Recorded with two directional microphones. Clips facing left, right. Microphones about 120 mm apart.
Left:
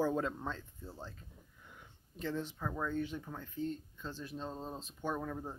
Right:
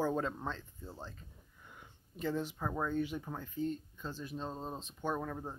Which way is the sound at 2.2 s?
10° right (ahead or behind).